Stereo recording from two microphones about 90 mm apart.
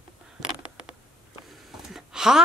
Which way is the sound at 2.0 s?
5° right (ahead or behind).